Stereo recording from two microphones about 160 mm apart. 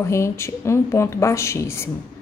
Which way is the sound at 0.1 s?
15° left (ahead or behind).